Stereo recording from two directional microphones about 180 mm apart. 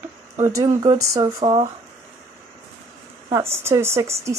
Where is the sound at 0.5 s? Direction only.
20° right (ahead or behind).